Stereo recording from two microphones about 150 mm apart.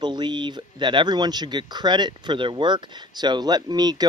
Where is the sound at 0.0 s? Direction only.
30° right (ahead or behind).